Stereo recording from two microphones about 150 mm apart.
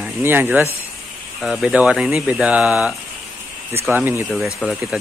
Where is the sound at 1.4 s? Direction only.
Centre (ahead or behind); by 3.9 s 15° right (ahead or behind).